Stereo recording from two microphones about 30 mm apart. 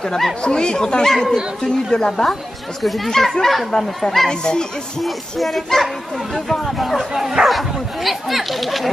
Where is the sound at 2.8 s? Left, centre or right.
Centre.